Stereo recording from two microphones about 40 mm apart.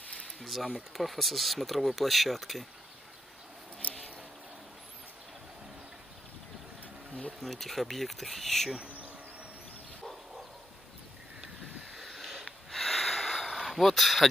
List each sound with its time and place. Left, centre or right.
0.4 s speech: centre
3.8 s a sound: left
7.4 s speech: centre
11.9 s sniff: centre